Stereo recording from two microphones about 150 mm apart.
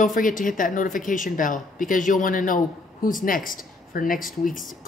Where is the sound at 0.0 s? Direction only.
60° left (ahead or behind).